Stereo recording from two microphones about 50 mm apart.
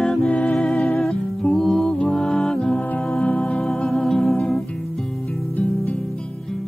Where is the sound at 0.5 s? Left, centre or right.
Centre.